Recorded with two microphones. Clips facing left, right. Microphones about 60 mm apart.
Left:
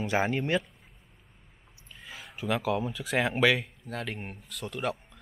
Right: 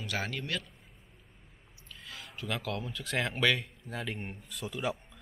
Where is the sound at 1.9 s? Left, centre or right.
Centre.